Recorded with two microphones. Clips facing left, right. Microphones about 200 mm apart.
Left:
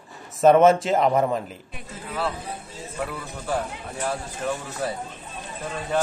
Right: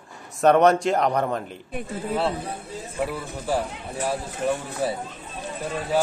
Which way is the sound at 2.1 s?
30° right (ahead or behind).